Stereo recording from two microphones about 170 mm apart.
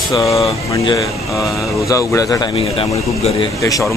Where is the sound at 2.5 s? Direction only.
30° left (ahead or behind).